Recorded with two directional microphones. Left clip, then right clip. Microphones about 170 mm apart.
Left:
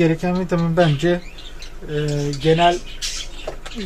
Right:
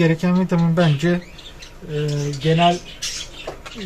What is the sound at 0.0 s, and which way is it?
Speech, 25° left (ahead or behind).